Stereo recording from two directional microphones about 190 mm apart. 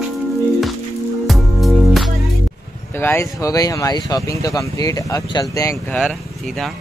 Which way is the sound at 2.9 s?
10° left (ahead or behind).